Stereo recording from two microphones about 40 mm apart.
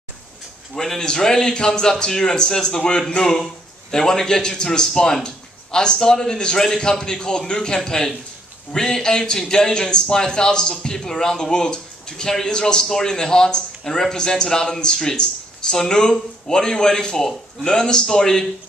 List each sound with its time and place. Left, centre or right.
0.7 s a man's voice: centre